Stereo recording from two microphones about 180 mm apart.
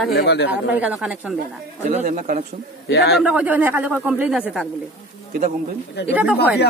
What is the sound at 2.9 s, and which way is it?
Speech, 65° left (ahead or behind).